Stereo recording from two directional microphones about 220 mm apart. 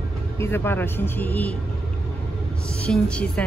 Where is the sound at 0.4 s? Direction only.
10° left (ahead or behind).